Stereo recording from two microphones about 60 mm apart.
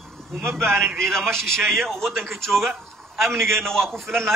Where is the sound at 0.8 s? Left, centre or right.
Right.